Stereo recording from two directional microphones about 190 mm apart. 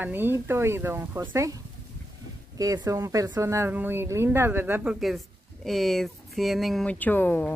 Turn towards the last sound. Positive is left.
turn(degrees=10)  # may be behind; listen again after turning